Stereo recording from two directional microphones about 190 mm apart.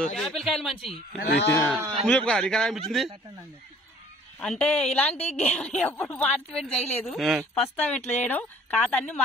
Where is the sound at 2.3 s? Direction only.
5° left (ahead or behind).